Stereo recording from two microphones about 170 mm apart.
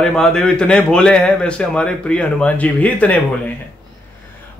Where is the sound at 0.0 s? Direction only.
5° left (ahead or behind).